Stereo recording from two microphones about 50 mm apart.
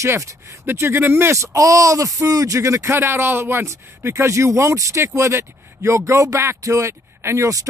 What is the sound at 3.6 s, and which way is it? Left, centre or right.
Speech, right.